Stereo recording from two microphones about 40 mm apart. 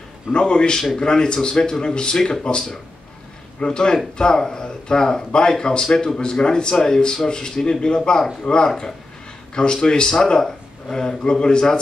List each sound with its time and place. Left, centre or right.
0.3 s speech: left
3.5 s speech: left